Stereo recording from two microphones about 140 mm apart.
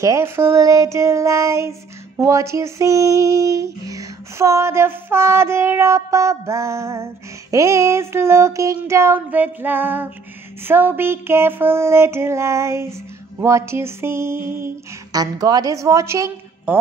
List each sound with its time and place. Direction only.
0.0 s child singing: 20° right (ahead or behind)
10.6 s a sound: 15° right (ahead or behind)
15.1 s child singing: 25° right (ahead or behind)